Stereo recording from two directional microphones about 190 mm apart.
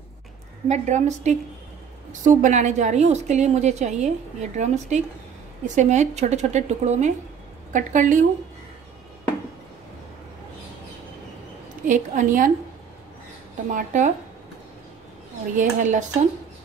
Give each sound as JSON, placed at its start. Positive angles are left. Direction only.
{"t": 0.7, "sound": "a woman's voice", "side_deg": -40}
{"t": 11.9, "sound": "a woman's voice", "side_deg": -45}
{"t": 13.7, "sound": "a woman's voice", "side_deg": -40}
{"t": 15.5, "sound": "a woman's voice", "side_deg": -40}